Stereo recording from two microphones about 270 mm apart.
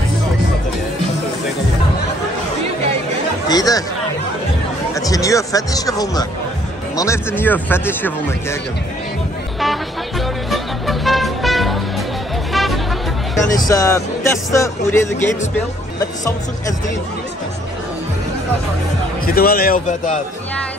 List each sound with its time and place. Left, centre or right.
3.4 s speech: centre
4.9 s music: centre
10.5 s music: centre
13.6 s music: centre
19.2 s speech: left